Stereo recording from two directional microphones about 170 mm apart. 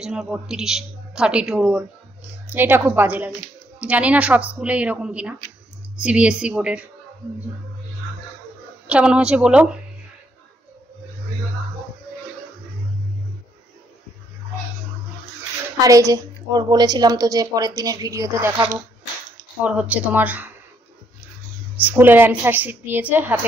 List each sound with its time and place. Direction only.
0.0 s a woman's voice: 5° right (ahead or behind)
8.8 s a woman's voice: 5° right (ahead or behind)
15.8 s a woman's voice: 20° right (ahead or behind)
19.6 s a woman's voice: 10° right (ahead or behind)
21.7 s a woman's voice: 10° right (ahead or behind)